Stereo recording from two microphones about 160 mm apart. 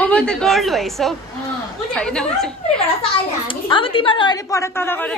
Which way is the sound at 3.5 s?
30° left (ahead or behind).